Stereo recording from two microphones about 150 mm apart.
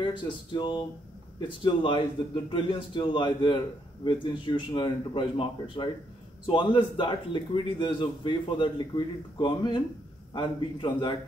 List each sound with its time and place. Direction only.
0.0 s a man's voice: 35° left (ahead or behind)